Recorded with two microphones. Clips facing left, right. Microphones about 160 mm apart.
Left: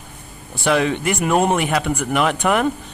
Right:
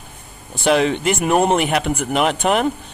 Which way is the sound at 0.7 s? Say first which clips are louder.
Right 2 dB; 25° right (ahead or behind).